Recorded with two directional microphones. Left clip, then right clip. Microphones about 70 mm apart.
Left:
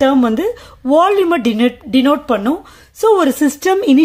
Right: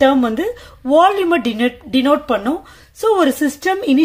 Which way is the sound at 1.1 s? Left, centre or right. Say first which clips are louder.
Left 2 dB; left.